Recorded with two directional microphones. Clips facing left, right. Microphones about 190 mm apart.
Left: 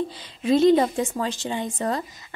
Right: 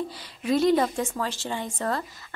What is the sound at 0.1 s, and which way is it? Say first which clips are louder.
A woman's voice: left 4 dB; 20° left (ahead or behind).